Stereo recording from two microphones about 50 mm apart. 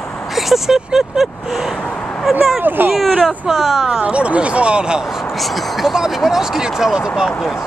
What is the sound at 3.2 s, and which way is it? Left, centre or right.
Speech, centre.